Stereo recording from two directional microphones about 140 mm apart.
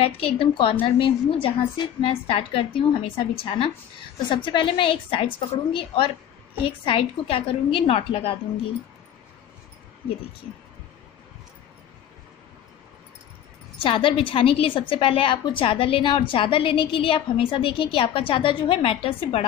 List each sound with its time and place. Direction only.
0.0 s a woman's voice: 40° left (ahead or behind)
13.7 s a woman's voice: 40° left (ahead or behind)